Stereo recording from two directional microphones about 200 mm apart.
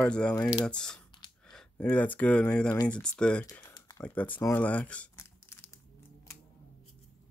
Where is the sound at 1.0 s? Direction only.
20° left (ahead or behind).